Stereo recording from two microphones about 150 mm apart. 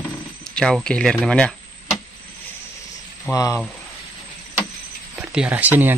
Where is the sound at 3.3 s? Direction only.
25° left (ahead or behind).